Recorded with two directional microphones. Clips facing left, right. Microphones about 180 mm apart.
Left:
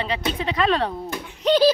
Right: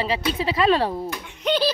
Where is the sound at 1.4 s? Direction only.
40° left (ahead or behind).